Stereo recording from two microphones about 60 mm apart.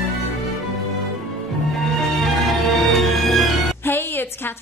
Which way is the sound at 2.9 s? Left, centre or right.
Centre.